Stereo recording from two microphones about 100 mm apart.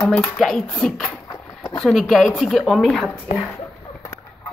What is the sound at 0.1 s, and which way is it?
A woman's voice, 5° left (ahead or behind).